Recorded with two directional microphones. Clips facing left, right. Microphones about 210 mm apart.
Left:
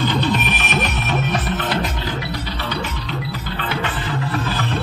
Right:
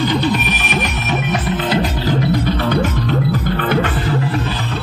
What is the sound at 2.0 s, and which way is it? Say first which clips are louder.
Music: right 10 dB; 50° right (ahead or behind).